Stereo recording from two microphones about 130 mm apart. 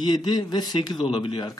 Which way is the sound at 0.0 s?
35° left (ahead or behind).